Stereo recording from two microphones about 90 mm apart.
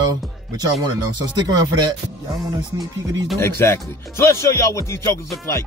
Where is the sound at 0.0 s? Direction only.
50° right (ahead or behind).